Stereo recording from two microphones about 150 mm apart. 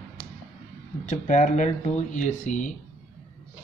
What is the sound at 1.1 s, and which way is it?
Speech, 55° left (ahead or behind).